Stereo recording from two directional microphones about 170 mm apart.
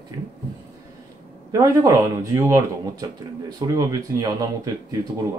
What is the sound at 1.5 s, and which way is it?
Speech, 20° right (ahead or behind).